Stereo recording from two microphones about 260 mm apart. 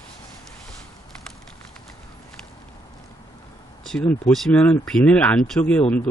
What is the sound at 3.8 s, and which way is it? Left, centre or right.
Speech, centre.